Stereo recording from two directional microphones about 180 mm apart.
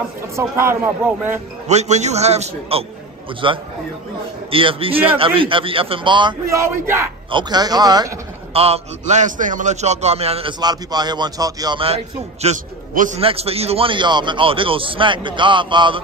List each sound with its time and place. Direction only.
0.4 s a man's voice: 15° right (ahead or behind)
1.7 s a man's voice: 40° right (ahead or behind)
6.5 s a man's voice: 15° right (ahead or behind)
8.5 s a man's voice: 35° right (ahead or behind)
10.6 s a man's voice: 20° right (ahead or behind); by 13.2 s 45° right (ahead or behind)
13.2 s a man's voice: 35° right (ahead or behind)